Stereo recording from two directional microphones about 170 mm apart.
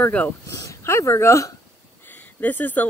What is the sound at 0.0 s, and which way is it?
A woman's voice, 10° left (ahead or behind).